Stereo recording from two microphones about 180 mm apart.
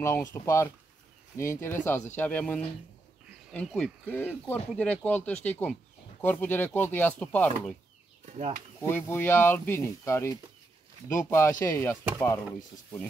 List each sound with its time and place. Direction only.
0.0 s speech: 15° left (ahead or behind)
8.4 s speech: 40° right (ahead or behind)
8.8 s speech: 10° left (ahead or behind)